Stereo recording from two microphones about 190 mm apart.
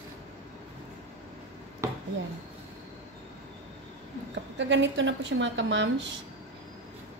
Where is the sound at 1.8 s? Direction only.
15° right (ahead or behind).